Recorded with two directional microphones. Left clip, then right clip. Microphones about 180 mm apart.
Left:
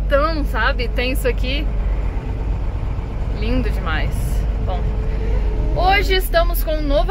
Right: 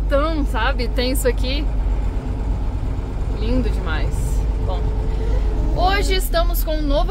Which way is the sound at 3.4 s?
15° right (ahead or behind).